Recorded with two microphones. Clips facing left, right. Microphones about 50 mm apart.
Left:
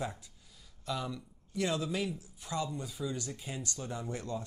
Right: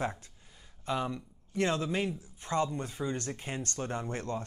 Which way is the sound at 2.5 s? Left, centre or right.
Right.